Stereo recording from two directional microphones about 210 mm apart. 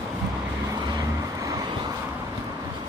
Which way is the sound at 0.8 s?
20° right (ahead or behind).